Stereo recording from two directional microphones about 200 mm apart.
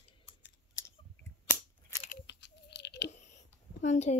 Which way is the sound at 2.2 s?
60° left (ahead or behind).